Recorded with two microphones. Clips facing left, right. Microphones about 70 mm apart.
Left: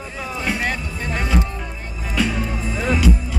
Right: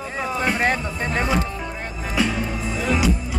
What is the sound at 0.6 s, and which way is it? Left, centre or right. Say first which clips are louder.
Music: right 3 dB; right.